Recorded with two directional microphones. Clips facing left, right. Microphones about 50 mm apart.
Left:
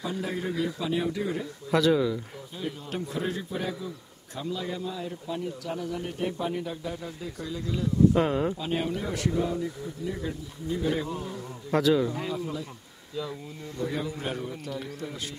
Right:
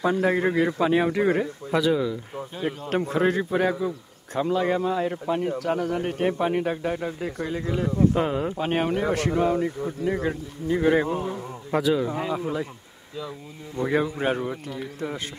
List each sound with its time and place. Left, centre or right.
0.0 s speech: right
1.7 s speech: centre
2.9 s a man's voice: right
8.1 s speech: centre
8.5 s speech: right
11.7 s speech: centre
12.1 s a man's voice: right
13.8 s a man's voice: right
14.2 s speech: right